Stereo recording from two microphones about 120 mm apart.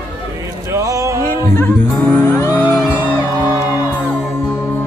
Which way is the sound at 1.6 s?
20° left (ahead or behind).